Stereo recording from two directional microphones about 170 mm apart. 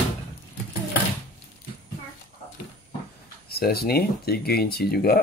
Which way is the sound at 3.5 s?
65° left (ahead or behind).